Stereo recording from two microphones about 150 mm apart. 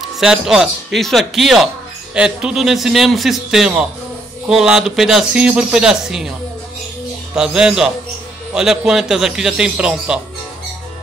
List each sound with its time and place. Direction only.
0.0 s a man's voice: 5° right (ahead or behind)
7.3 s a man's voice: 5° right (ahead or behind)